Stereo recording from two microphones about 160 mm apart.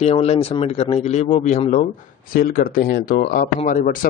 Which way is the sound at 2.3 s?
65° left (ahead or behind).